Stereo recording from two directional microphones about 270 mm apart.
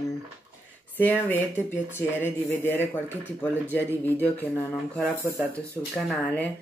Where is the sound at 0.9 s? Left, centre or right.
Centre.